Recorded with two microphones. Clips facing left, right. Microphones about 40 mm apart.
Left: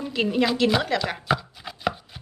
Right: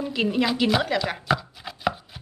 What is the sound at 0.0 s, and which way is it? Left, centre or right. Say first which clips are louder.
Chopping: even; centre.